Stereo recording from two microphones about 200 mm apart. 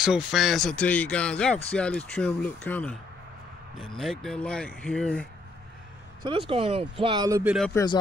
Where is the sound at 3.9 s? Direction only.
Centre (ahead or behind).